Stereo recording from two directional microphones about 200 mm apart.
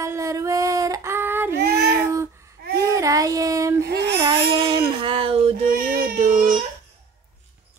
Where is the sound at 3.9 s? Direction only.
55° right (ahead or behind).